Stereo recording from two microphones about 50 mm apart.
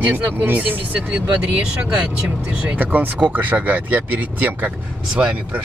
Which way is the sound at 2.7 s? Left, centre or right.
Right.